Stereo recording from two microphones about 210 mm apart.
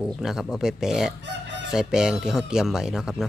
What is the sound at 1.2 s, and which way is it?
Chicken, 55° right (ahead or behind).